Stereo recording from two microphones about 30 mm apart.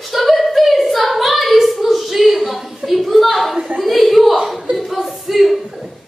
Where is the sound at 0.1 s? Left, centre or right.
Centre.